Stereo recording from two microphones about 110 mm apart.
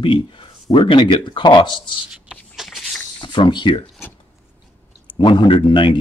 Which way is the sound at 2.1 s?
5° right (ahead or behind).